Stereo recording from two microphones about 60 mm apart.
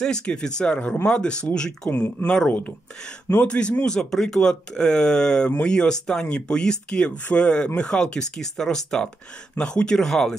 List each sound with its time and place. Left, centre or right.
0.0 s speech: centre
1.9 s speech: left
2.2 s speech: centre